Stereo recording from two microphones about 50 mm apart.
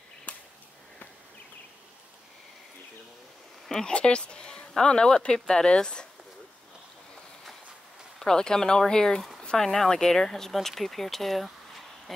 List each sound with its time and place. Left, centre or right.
3.6 s speech: centre
3.9 s speech: left
8.2 s speech: centre
9.4 s a sound: centre
9.8 s speech: centre